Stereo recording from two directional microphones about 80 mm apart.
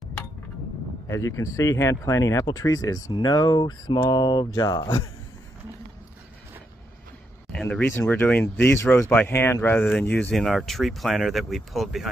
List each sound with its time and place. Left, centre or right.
1.0 s speech: left
3.1 s speech: left
4.6 s speech: left
7.8 s speech: left
10.0 s speech: centre
10.3 s speech: centre